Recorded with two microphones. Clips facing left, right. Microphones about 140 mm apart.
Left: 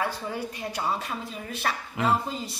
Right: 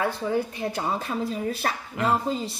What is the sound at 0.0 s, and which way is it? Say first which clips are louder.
A woman's voice: right 5 dB; 30° right (ahead or behind).